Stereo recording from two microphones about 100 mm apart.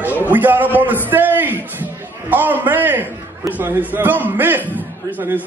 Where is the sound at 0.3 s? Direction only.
20° right (ahead or behind).